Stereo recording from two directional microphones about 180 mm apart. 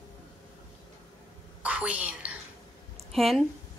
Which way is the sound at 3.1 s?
Centre (ahead or behind).